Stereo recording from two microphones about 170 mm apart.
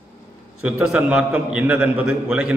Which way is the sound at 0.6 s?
5° right (ahead or behind).